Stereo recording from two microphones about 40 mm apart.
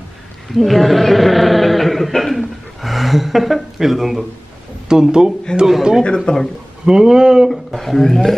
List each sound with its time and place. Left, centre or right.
0.6 s speech: centre
4.8 s speech: centre
6.0 s speech: left
6.9 s speech: centre
7.4 s speech: centre